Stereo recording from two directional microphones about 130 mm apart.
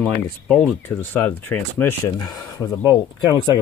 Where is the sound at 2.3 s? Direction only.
30° left (ahead or behind).